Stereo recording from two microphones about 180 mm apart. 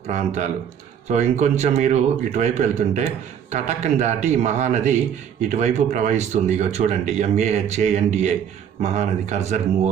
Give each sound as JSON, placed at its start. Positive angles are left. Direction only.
{"t": 0.0, "sound": "speech", "side_deg": -40}